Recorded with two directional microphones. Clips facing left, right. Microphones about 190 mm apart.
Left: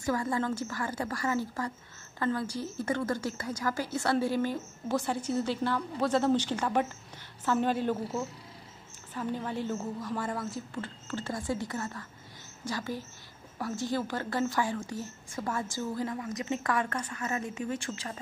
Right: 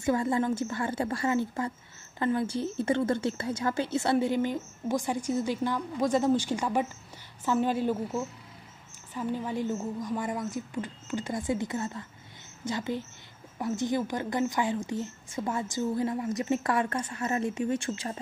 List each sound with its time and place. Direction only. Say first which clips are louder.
0.0 s a woman's voice: right 4 dB; 25° right (ahead or behind)
9.1 s a woman's voice: right 2 dB; 10° right (ahead or behind); by 17.6 s 35° right (ahead or behind)